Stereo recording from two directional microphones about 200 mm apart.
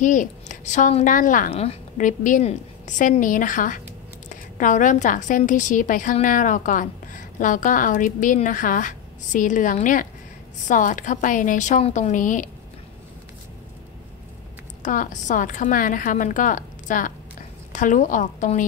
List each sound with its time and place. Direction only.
0.0 s a woman's voice: 40° left (ahead or behind)
1.5 s a woman's voice: 30° left (ahead or behind)
14.8 s a woman's voice: 40° left (ahead or behind)